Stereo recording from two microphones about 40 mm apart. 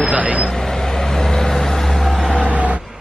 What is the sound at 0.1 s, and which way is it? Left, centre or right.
Speech, right.